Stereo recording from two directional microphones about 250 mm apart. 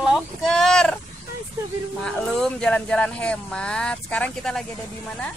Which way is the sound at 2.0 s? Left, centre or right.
Centre.